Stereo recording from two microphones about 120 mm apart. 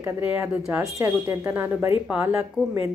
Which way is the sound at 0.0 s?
20° right (ahead or behind).